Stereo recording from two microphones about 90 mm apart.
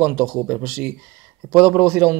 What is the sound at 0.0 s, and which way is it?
Speech, 10° right (ahead or behind).